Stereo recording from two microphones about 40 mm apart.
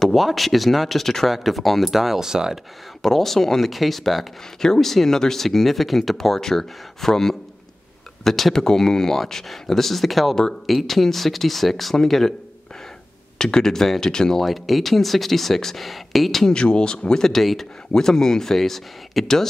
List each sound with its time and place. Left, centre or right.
0.0 s speech: centre
3.0 s speech: centre
13.4 s speech: centre
14.4 s speech: centre
16.5 s speech: left